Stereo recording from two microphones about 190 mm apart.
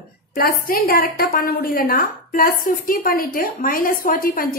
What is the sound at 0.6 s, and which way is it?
A woman's voice, 50° left (ahead or behind).